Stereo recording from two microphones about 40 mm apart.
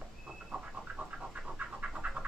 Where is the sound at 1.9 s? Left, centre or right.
Right.